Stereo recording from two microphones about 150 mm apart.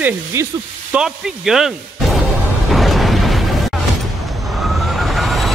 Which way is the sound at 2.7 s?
Centre (ahead or behind).